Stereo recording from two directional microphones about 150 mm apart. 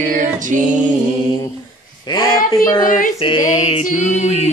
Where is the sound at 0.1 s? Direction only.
60° right (ahead or behind).